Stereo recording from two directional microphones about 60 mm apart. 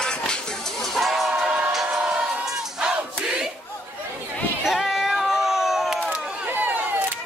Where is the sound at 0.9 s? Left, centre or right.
Centre.